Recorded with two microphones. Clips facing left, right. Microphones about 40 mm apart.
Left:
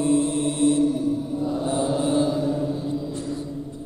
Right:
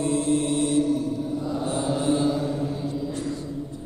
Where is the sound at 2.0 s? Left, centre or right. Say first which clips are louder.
Right 1 dB; centre.